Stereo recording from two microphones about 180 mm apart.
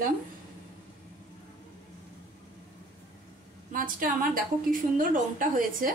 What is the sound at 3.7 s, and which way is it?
A woman's voice, 50° right (ahead or behind).